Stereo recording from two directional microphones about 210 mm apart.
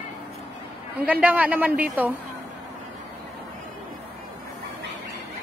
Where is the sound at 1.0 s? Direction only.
5° right (ahead or behind).